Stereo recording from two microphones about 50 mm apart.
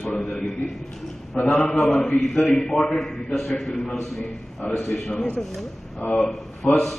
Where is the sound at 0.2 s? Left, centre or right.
Centre.